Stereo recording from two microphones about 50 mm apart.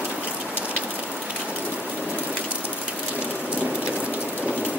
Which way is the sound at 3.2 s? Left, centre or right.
Right.